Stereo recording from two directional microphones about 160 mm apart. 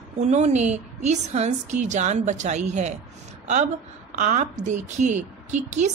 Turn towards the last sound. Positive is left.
turn(degrees=-45)  # may be behind; listen again after turning